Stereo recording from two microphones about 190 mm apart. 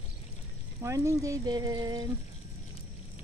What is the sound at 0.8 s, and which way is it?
Speech, 15° right (ahead or behind).